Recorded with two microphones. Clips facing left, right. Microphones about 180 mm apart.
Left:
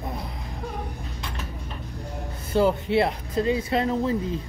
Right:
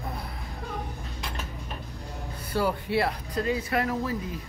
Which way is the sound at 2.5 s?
20° left (ahead or behind).